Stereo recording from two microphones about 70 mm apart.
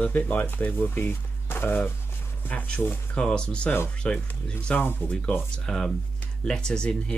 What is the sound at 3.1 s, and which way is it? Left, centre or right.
Speech, centre.